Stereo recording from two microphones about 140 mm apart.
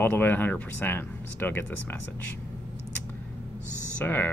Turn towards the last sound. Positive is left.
turn(degrees=15)  # may be behind; listen again after turning